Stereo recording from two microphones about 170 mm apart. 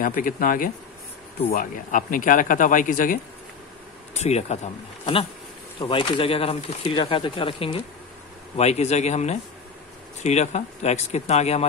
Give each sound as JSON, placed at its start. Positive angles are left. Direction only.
{"t": 0.0, "sound": "speech", "side_deg": 55}
{"t": 4.1, "sound": "speech", "side_deg": 40}
{"t": 5.8, "sound": "speech", "side_deg": 30}